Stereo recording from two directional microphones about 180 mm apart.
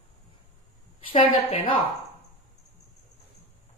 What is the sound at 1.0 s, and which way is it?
Speech, 30° left (ahead or behind).